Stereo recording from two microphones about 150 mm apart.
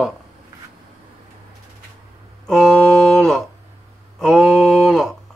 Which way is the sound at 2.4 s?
5° left (ahead or behind).